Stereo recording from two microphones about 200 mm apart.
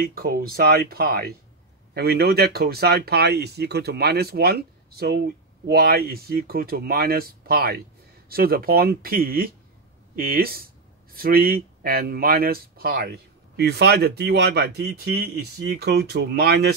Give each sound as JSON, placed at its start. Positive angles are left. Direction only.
{"t": 0.0, "sound": "speech", "side_deg": -50}